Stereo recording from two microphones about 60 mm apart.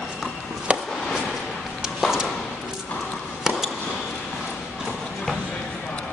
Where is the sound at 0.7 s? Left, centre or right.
Centre.